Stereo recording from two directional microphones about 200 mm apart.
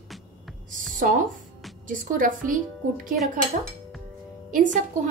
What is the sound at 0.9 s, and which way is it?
A woman's voice, 40° right (ahead or behind).